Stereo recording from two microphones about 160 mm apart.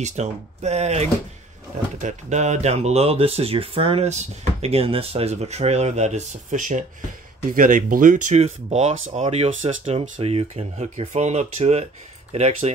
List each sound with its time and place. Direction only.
0.0 s speech: 45° right (ahead or behind)